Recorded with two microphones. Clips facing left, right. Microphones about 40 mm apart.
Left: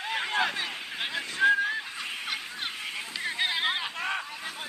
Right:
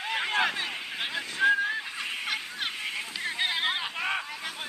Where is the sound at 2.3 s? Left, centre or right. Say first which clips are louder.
Right 2 dB; right.